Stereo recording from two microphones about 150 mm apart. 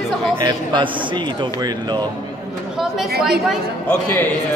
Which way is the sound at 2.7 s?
Centre (ahead or behind).